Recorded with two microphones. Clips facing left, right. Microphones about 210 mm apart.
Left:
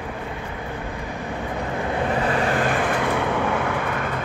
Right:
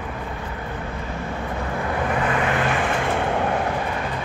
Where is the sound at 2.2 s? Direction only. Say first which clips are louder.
Left 1 dB; 35° left (ahead or behind); by 3.4 s 60° left (ahead or behind).